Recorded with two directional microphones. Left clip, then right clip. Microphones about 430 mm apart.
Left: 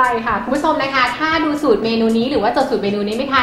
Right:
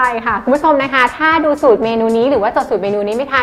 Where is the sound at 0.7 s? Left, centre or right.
Right.